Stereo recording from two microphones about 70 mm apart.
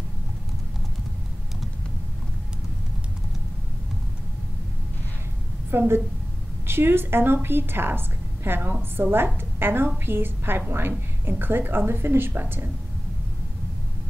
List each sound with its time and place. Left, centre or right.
5.7 s a woman's voice: right